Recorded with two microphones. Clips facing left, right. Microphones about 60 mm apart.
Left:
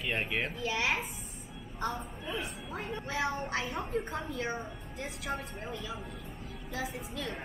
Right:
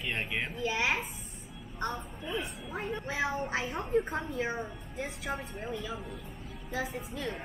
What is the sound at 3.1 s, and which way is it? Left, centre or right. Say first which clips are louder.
A woman's voice: even; centre.